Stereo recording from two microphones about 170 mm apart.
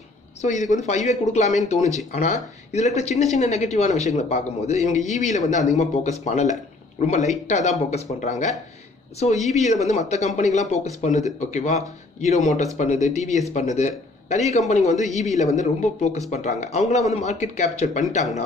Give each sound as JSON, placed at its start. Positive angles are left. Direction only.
{"t": 0.4, "sound": "speech", "side_deg": 45}